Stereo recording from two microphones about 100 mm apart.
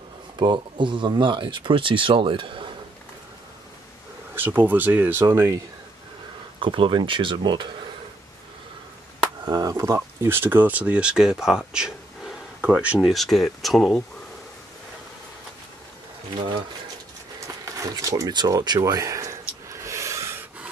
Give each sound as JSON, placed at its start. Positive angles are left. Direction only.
{"t": 0.4, "sound": "speech", "side_deg": -50}
{"t": 4.4, "sound": "speech", "side_deg": -20}
{"t": 6.6, "sound": "speech", "side_deg": -55}
{"t": 9.4, "sound": "speech", "side_deg": -40}
{"t": 13.0, "sound": "speech", "side_deg": 0}
{"t": 17.6, "sound": "a sound", "side_deg": -35}